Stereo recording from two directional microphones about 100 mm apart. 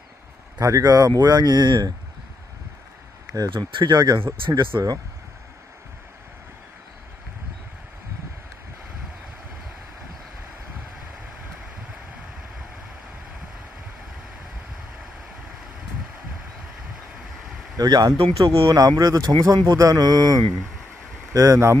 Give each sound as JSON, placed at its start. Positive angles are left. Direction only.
{"t": 0.6, "sound": "speech", "side_deg": -35}
{"t": 3.4, "sound": "speech", "side_deg": -55}
{"t": 17.7, "sound": "speech", "side_deg": -40}
{"t": 18.1, "sound": "speech", "side_deg": -65}
{"t": 18.5, "sound": "speech", "side_deg": -30}